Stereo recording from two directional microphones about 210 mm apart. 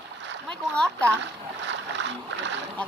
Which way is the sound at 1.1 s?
60° right (ahead or behind).